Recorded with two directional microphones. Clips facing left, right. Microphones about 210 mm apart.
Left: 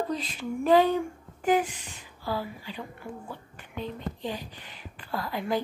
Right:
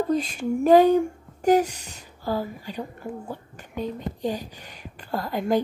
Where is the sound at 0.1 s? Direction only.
45° right (ahead or behind).